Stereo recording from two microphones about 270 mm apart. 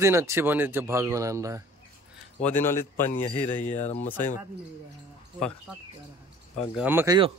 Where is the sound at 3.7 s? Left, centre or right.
Left.